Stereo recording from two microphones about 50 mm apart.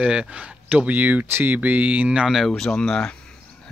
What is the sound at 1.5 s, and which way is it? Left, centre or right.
Speech, right.